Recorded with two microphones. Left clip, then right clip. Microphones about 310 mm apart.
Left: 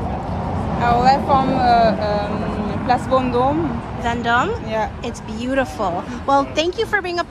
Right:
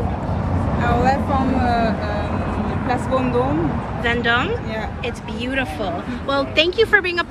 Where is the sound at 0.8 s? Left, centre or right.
Centre.